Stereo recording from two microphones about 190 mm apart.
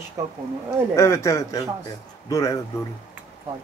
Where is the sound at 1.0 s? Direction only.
15° left (ahead or behind).